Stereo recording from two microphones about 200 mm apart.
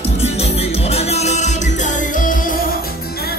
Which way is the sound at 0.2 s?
30° left (ahead or behind).